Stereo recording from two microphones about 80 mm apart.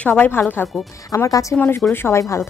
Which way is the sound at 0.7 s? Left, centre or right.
Centre.